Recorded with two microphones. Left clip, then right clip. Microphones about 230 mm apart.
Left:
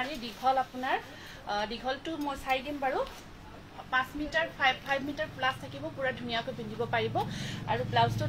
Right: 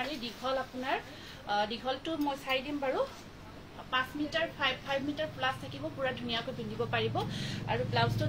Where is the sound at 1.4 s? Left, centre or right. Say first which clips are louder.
Right 1 dB; centre.